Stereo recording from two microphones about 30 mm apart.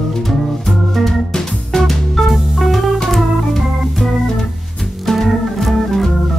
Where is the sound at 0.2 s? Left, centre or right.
Centre.